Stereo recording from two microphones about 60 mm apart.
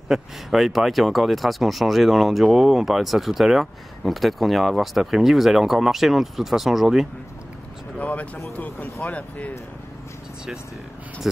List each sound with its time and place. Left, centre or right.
0.1 s speech: centre
8.0 s speech: left